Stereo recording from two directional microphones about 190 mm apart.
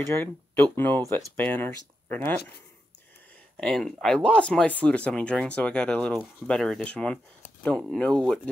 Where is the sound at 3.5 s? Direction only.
5° left (ahead or behind).